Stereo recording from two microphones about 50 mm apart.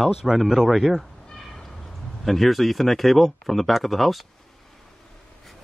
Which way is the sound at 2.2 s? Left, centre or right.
Centre.